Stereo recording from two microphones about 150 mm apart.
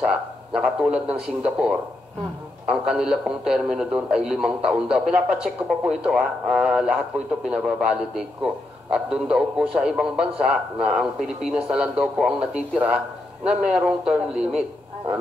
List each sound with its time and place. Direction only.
0.0 s a man's voice: 5° right (ahead or behind)